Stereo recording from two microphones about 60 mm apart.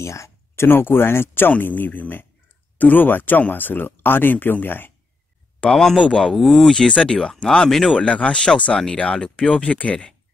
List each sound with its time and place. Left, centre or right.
0.0 s a sound: left
0.7 s speech: left
5.6 s speech: centre
6.3 s speech: centre
6.7 s speech: centre
8.0 s speech: left